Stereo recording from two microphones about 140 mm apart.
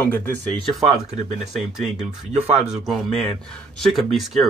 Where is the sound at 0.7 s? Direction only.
Centre (ahead or behind).